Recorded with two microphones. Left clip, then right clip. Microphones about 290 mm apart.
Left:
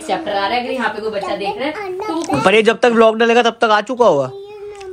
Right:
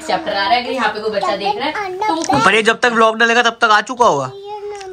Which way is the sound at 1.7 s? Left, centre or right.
Right.